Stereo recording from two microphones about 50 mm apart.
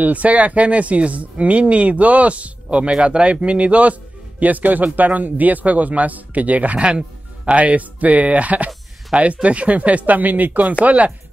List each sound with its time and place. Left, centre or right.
0.0 s a man's voice: right